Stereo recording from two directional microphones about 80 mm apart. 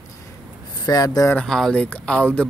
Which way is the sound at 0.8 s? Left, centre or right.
Left.